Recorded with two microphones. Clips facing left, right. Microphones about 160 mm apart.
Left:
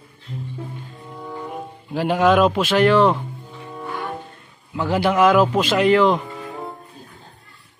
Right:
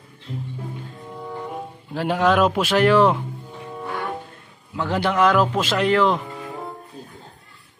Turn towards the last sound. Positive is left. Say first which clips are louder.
# left 3 dB
turn(degrees=0)  # may be behind; listen again after turning